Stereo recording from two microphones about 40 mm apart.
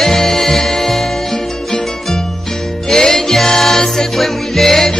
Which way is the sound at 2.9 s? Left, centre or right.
Centre.